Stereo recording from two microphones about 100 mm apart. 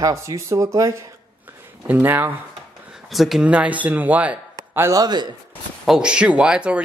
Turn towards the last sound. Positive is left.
turn(degrees=-10)  # may be behind; listen again after turning